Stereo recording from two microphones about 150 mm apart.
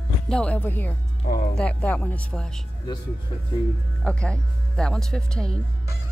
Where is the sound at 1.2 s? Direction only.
85° left.